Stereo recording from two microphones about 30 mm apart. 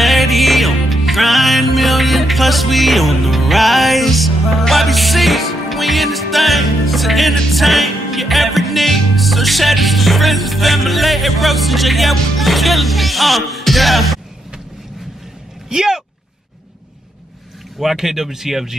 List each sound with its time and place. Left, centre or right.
0.0 s music: centre
15.7 s a sound: centre
17.7 s speech: centre